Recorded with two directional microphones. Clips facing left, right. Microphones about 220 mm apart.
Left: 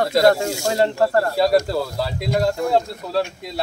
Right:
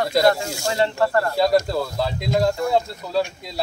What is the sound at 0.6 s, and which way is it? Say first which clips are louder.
Speech: left 2 dB; 40° left (ahead or behind).